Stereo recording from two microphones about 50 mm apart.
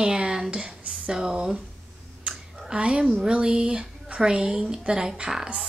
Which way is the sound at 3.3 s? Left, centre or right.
Right.